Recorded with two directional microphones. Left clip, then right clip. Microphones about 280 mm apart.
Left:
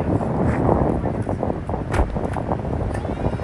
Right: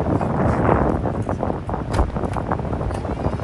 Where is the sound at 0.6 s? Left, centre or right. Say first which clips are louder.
Even; centre.